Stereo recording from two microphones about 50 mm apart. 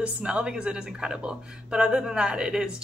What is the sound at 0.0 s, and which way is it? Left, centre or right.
Speech, right.